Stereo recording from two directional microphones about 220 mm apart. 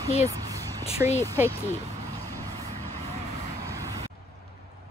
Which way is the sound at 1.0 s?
5° right (ahead or behind).